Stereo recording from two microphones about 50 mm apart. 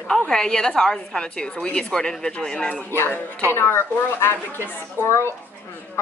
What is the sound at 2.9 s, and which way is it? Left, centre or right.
A woman's voice, left.